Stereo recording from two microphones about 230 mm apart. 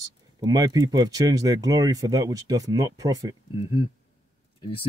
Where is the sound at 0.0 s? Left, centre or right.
Centre.